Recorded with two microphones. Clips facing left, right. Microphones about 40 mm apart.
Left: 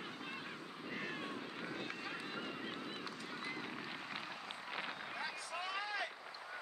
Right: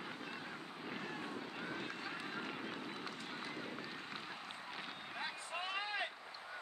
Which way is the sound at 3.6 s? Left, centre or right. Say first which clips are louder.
Left 1 dB; left.